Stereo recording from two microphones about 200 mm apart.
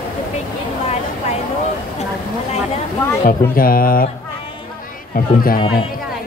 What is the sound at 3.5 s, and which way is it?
Mantra, 45° left (ahead or behind).